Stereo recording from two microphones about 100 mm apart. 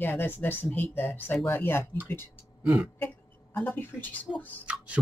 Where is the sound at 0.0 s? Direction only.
20° left (ahead or behind).